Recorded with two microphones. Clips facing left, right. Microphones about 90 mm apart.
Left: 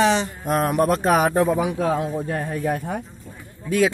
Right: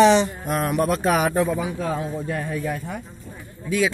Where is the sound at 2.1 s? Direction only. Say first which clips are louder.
Left 1 dB; 45° left (ahead or behind).